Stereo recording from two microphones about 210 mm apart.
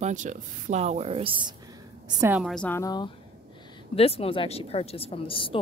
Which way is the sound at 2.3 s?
Centre (ahead or behind).